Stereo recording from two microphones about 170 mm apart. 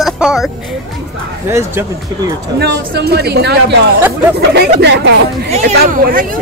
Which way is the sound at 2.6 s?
75° right (ahead or behind).